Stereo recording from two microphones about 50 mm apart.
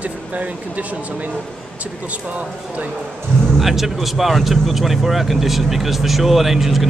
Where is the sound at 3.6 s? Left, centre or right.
Centre.